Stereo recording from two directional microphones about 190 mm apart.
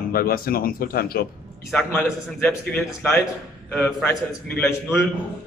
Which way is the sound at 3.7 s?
10° left (ahead or behind).